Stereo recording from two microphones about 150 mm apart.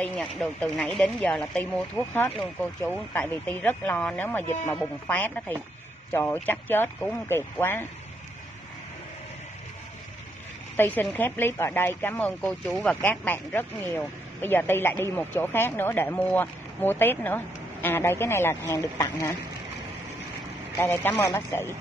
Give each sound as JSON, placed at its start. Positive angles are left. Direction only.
{"t": 0.0, "sound": "speech", "side_deg": 5}
{"t": 10.8, "sound": "speech", "side_deg": 15}
{"t": 20.8, "sound": "speech", "side_deg": 15}